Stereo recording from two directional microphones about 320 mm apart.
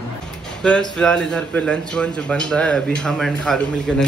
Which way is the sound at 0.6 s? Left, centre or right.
Centre.